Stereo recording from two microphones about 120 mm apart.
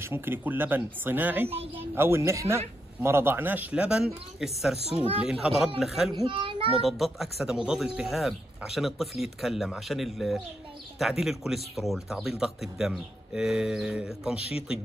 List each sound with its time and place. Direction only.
0.0 s speech: 20° right (ahead or behind); by 6.1 s centre (ahead or behind)
6.2 s a child's voice: 45° right (ahead or behind)
6.8 s speech: centre (ahead or behind)